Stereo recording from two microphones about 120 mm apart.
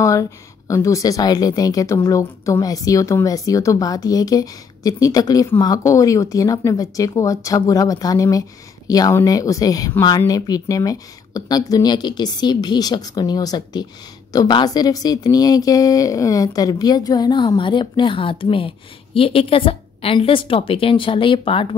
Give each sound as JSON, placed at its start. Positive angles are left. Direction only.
{"t": 0.0, "sound": "a woman's voice", "side_deg": 25}